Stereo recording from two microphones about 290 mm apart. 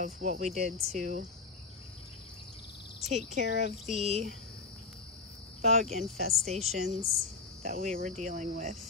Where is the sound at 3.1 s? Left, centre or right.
Right.